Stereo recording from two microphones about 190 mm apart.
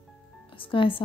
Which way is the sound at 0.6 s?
25° left (ahead or behind).